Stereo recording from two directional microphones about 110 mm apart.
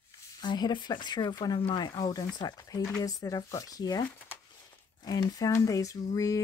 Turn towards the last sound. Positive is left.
turn(degrees=30)  # may be behind; listen again after turning